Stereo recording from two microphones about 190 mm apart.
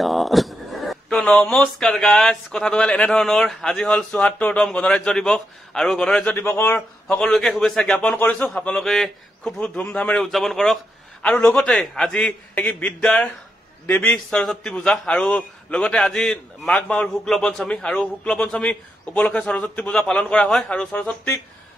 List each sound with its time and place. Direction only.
0.0 s a man's voice: centre (ahead or behind)